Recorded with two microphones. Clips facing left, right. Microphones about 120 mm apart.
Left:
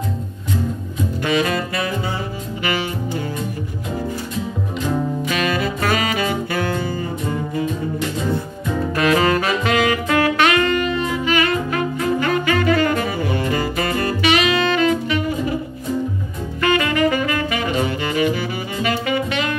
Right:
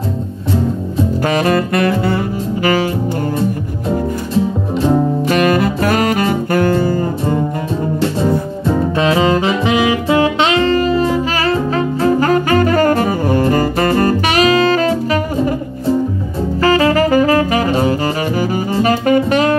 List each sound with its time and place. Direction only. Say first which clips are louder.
1.2 s saxophone: right 4 dB; 50° right (ahead or behind)
2.6 s music: right 8 dB; 40° right (ahead or behind)
5.3 s music: right 9 dB; 50° right (ahead or behind)
8.0 s saxophone: right 9 dB; 30° right (ahead or behind)
16.6 s saxophone: right 5 dB; 35° right (ahead or behind)